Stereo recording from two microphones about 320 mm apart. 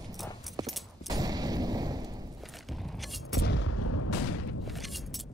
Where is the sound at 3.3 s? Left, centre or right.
Left.